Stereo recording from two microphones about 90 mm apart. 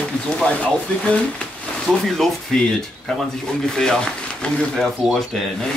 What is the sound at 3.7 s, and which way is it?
Speech, 5° left (ahead or behind).